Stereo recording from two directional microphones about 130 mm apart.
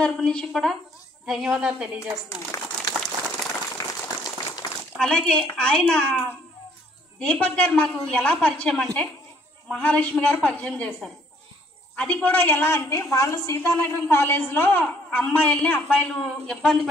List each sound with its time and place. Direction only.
0.0 s a woman's voice: 5° left (ahead or behind)
2.2 s speech: 25° left (ahead or behind)
3.7 s a sound: 25° left (ahead or behind)
4.9 s a woman's voice: 5° left (ahead or behind)
11.9 s a woman's voice: 10° left (ahead or behind)